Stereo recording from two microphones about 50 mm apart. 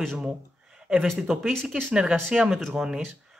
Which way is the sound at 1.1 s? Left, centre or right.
Centre.